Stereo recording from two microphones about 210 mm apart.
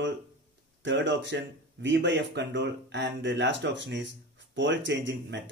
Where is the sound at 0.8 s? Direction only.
60° right (ahead or behind).